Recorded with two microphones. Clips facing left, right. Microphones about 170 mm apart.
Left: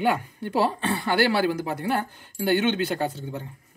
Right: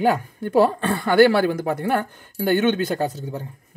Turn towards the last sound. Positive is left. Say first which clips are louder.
# right 3 dB
turn(degrees=-40)  # may be behind; listen again after turning